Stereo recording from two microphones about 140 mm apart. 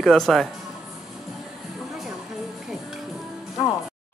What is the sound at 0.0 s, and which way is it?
Speech, centre (ahead or behind).